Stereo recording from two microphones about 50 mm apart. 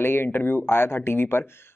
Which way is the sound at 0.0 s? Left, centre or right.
Left.